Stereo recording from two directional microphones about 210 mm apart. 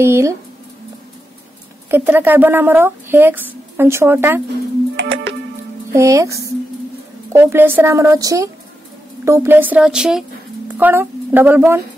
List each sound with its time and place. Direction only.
0.0 s speech: 15° right (ahead or behind)
1.9 s speech: 10° right (ahead or behind)
4.9 s music: 65° right (ahead or behind)
5.9 s speech: 15° right (ahead or behind)